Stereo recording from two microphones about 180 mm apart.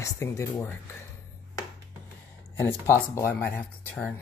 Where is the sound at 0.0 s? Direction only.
15° left (ahead or behind).